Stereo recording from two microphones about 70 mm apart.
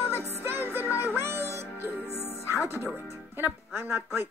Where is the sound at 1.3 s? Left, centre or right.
Right.